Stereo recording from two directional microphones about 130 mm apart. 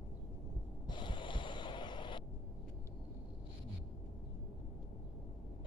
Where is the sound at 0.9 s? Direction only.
35° left (ahead or behind).